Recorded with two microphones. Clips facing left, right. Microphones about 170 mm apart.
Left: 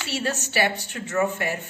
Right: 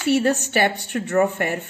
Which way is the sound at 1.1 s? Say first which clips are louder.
Right 4 dB; 40° right (ahead or behind).